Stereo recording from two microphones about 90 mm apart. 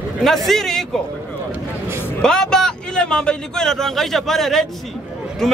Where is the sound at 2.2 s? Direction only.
5° left (ahead or behind).